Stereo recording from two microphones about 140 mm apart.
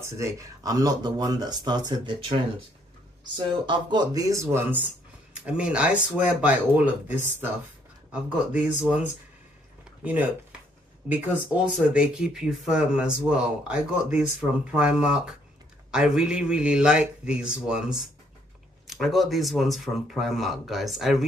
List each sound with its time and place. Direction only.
0.0 s speech: 20° right (ahead or behind)
3.3 s speech: 35° right (ahead or behind); by 9.0 s 10° right (ahead or behind)
10.0 s speech: 10° right (ahead or behind)